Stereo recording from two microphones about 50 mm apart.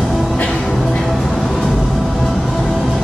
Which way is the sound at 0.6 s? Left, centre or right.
Centre.